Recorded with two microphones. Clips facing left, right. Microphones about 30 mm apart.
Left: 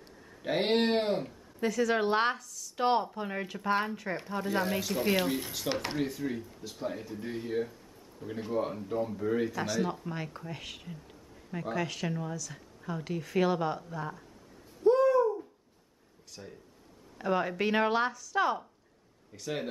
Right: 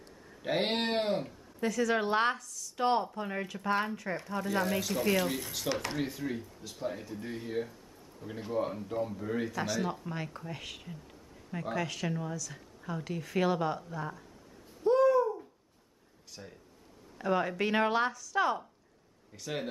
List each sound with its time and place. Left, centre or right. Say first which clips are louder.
0.4 s speech: left 3 dB; centre
5.7 s speech: even; left
5.9 s speech: left 2 dB; centre
14.8 s a sound: left 1 dB; centre
16.4 s speech: left 2 dB; centre
17.2 s speech: even; centre